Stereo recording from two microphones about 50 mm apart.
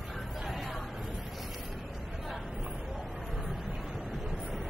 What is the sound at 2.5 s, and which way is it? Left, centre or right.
Chatter, right.